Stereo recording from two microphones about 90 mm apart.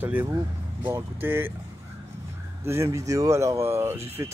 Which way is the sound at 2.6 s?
30° right (ahead or behind).